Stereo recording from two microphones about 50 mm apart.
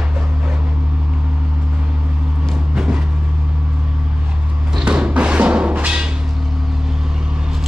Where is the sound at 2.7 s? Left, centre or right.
Centre.